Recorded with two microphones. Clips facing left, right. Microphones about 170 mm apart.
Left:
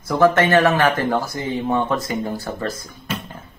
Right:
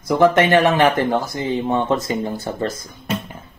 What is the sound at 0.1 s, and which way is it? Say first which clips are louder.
Speech: right 1 dB; 20° right (ahead or behind).